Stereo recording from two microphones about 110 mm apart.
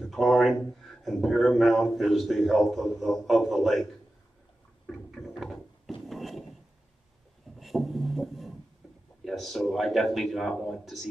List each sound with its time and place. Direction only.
0.0 s a man's voice: centre (ahead or behind)
5.1 s a sound: centre (ahead or behind)
6.0 s wood: centre (ahead or behind)
7.5 s music: centre (ahead or behind)
9.2 s a man's voice: centre (ahead or behind)